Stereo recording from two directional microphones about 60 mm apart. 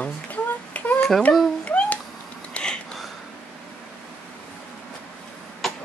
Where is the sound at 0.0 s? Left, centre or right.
Left.